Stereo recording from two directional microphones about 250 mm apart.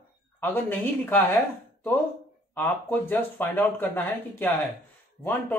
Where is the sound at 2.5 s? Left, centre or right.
Centre.